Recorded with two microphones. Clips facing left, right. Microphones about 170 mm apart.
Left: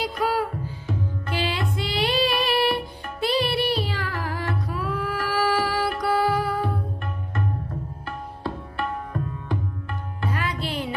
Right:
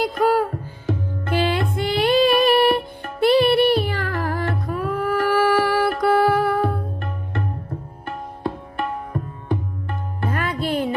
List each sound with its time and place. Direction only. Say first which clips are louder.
0.0 s music: right 6 dB; 50° right (ahead or behind)
8.5 s tabla: right 3 dB; 20° right (ahead or behind)
10.2 s music: right 4 dB; 50° right (ahead or behind)